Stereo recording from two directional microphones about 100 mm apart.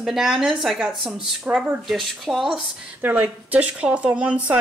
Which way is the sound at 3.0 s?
15° right (ahead or behind).